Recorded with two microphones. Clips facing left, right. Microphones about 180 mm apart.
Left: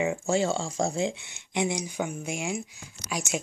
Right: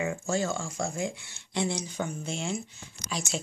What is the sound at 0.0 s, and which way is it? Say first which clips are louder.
Speech: left 4 dB; 25° left (ahead or behind).